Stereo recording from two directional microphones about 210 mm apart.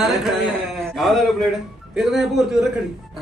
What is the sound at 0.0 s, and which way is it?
A man's voice, centre (ahead or behind).